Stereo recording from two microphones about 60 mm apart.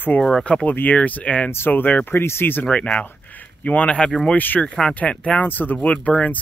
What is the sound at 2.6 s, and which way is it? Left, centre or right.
Speech, centre.